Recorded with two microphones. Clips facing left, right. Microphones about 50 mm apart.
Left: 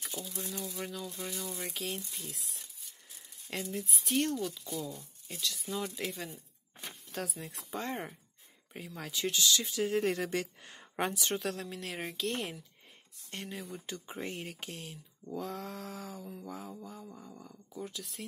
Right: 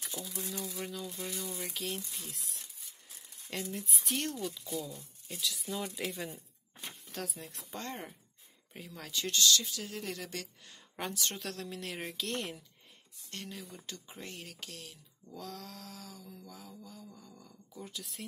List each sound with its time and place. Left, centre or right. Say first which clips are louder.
0.1 s speech: left 1 dB; left
0.8 s speech: even; centre
3.7 s speech: left 8 dB; centre
9.6 s a sound: left 9 dB; left
11.1 s speech: left 4 dB; centre
13.3 s a sound: left 3 dB; left
17.8 s speech: even; centre